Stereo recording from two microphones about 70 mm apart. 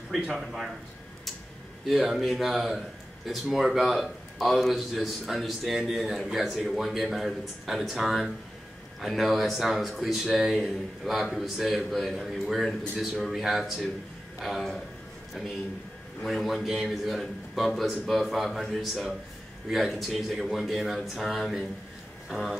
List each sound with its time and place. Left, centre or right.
0.1 s a man's voice: centre
1.9 s a man's voice: centre
16.2 s a man's voice: centre